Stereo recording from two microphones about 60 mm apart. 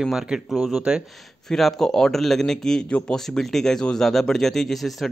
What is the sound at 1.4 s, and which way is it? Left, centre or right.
Speech, centre.